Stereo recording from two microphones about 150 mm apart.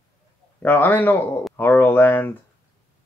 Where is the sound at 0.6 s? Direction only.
15° left (ahead or behind).